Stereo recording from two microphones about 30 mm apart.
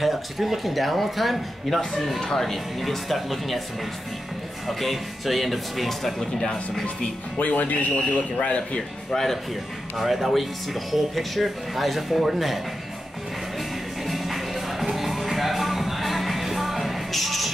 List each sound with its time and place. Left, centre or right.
0.0 s speech: centre
2.1 s speech: centre
4.6 s speech: centre
6.4 s speech: centre
7.3 s speech: left
8.4 s speech: left
9.1 s speech: centre
9.9 s speech: centre
14.0 s music: centre